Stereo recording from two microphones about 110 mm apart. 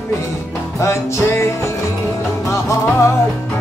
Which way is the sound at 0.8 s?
25° left (ahead or behind).